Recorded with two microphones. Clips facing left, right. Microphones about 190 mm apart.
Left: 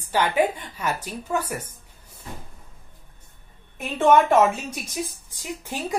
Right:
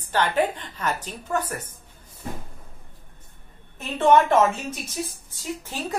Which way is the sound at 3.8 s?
10° left (ahead or behind).